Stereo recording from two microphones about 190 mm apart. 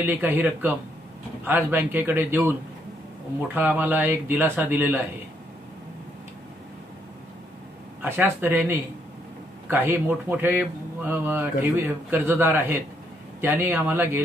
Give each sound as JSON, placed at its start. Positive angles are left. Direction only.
{"t": 0.0, "sound": "speech", "side_deg": -10}
{"t": 3.5, "sound": "speech", "side_deg": -10}
{"t": 8.0, "sound": "speech", "side_deg": -10}